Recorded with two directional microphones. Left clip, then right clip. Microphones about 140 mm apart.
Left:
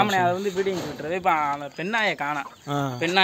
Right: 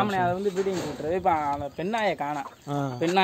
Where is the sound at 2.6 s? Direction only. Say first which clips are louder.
Left 3 dB; 5° left (ahead or behind).